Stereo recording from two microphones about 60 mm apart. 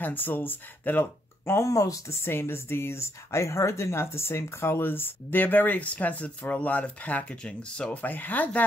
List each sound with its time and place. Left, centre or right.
0.0 s speech: left
1.4 s speech: left
1.7 s speech: left
2.2 s speech: left; by 7.9 s centre
7.9 s speech: left